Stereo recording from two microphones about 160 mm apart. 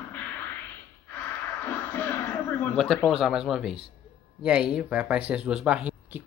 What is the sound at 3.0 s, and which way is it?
Speech, centre (ahead or behind).